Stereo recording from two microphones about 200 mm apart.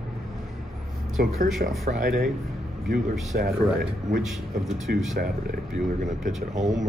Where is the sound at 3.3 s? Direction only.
45° right (ahead or behind).